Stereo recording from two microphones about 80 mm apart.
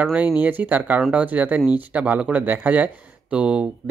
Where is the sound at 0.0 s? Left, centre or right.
Right.